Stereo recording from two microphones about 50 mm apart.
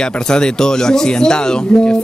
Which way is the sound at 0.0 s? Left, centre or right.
Centre.